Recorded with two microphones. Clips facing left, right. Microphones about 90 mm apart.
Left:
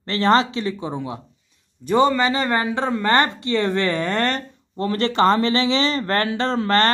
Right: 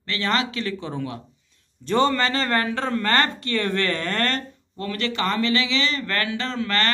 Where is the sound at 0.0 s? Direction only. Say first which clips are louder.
Left 7 dB; 35° left (ahead or behind).